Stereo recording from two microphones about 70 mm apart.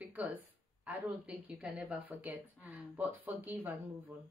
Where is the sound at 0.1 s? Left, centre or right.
Right.